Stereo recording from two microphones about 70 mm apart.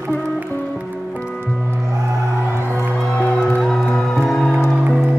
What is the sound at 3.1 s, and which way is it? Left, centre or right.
Music, left.